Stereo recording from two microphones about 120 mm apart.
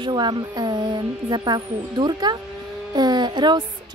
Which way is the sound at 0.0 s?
40° right (ahead or behind).